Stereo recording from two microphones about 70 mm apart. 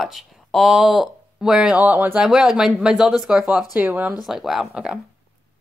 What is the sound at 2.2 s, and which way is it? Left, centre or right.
Speech, centre.